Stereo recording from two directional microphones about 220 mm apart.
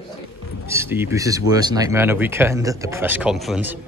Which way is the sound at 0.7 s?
10° right (ahead or behind).